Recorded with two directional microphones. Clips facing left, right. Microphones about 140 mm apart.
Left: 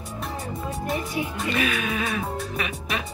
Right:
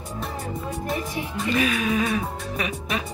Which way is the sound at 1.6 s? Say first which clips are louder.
Right 4 dB; 35° right (ahead or behind).